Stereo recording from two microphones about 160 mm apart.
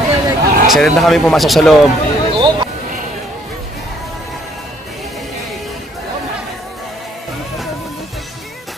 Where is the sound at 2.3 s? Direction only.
30° right (ahead or behind).